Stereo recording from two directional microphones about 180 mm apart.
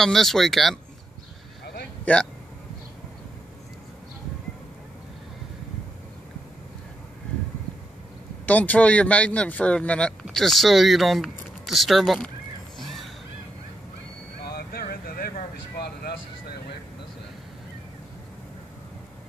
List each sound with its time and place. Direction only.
0.0 s speech: centre (ahead or behind)
2.1 s speech: 10° left (ahead or behind)
8.5 s speech: 10° left (ahead or behind)
12.7 s a sound: centre (ahead or behind)
14.4 s vehicle: 60° left (ahead or behind)